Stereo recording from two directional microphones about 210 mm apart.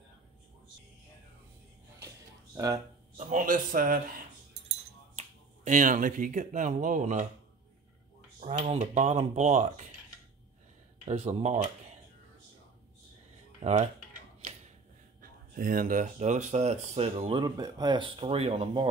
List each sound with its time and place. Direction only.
2.5 s speech: 15° right (ahead or behind)
3.2 s speech: 35° right (ahead or behind)
8.4 s speech: 35° right (ahead or behind)
11.1 s speech: 30° right (ahead or behind)
13.6 s speech: 30° right (ahead or behind)
15.2 s speech: 45° right (ahead or behind)